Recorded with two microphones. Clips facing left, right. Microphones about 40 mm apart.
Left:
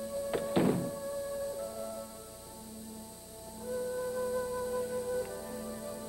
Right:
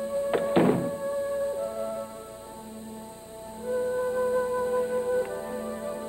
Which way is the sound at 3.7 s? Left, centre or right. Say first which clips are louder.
Right 8 dB; right.